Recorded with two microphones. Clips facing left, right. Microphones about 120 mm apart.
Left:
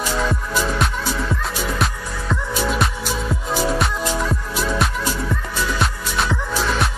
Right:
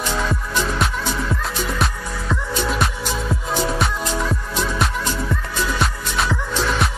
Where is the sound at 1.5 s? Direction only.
Centre (ahead or behind).